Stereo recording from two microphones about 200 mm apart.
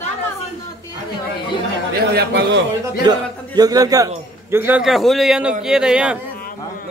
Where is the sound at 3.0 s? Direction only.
20° right (ahead or behind).